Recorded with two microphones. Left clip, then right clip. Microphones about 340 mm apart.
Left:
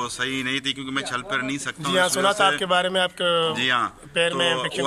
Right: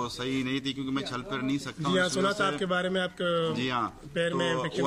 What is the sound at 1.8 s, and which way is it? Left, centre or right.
A man's voice, centre.